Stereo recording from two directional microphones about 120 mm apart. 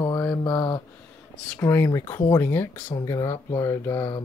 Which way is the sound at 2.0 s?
35° left (ahead or behind).